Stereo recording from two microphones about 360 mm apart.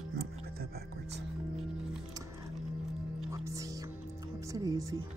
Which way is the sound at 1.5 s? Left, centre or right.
Centre.